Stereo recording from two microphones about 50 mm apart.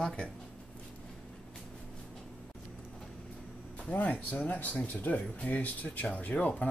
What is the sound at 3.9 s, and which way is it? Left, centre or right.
Speech, left.